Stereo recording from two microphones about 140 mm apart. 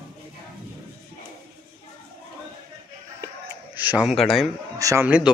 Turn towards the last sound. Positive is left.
turn(degrees=-10)  # may be behind; listen again after turning